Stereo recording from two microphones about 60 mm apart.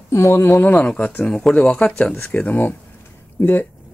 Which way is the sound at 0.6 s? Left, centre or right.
Left.